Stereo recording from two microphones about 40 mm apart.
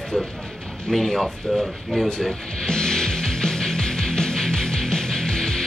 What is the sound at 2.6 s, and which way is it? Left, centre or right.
Music, centre.